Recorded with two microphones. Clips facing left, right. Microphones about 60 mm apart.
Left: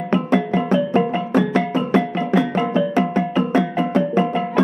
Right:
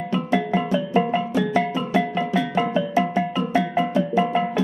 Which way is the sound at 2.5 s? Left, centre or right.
Centre.